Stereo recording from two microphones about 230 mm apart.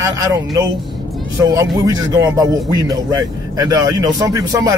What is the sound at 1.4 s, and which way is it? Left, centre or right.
Speech, centre.